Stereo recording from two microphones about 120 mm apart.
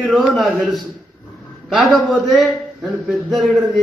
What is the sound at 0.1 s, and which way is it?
A man's voice, centre (ahead or behind).